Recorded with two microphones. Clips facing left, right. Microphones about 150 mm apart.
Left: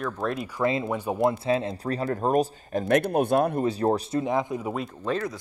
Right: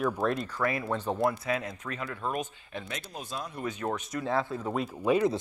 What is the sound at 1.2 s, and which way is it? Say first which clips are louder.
Speech: left 9 dB; 25° left (ahead or behind).